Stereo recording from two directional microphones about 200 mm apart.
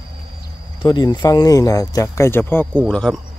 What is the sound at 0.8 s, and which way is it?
Speech, 20° left (ahead or behind).